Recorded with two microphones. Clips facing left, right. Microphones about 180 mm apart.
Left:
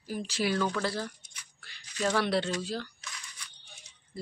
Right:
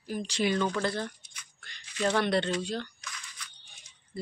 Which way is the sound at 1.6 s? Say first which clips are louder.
Right 2 dB; 5° left (ahead or behind).